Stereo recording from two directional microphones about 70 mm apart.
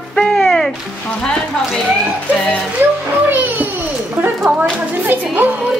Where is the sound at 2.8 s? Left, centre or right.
Right.